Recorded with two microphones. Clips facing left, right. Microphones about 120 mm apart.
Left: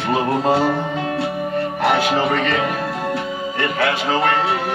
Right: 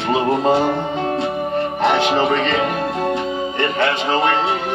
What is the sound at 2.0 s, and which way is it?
Music, 25° right (ahead or behind).